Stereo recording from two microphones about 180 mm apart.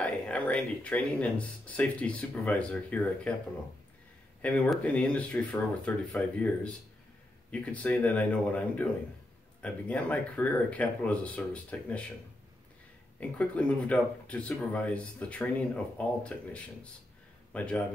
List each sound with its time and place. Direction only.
0.0 s speech: 5° left (ahead or behind)
4.4 s speech: 5° left (ahead or behind)
13.2 s speech: 5° left (ahead or behind)